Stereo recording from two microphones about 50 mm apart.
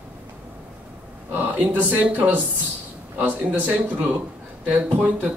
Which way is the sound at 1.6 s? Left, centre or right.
Right.